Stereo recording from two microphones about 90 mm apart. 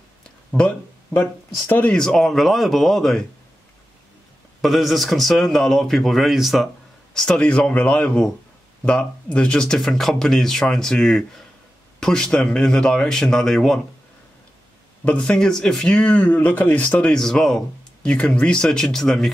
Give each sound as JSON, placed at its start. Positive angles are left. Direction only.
{"t": 0.6, "sound": "speech", "side_deg": 15}
{"t": 2.0, "sound": "speech", "side_deg": 5}
{"t": 4.6, "sound": "speech", "side_deg": 0}
{"t": 7.2, "sound": "speech", "side_deg": 10}
{"t": 15.0, "sound": "speech", "side_deg": 15}